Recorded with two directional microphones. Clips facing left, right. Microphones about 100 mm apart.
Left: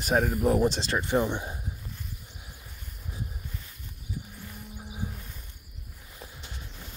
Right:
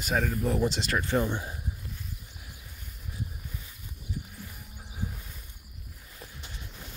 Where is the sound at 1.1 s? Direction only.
15° left (ahead or behind).